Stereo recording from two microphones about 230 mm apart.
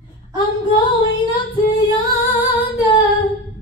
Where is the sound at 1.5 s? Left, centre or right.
Centre.